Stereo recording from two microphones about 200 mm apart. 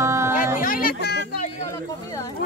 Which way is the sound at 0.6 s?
45° left (ahead or behind).